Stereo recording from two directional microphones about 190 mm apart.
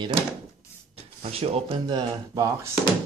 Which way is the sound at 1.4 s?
30° right (ahead or behind).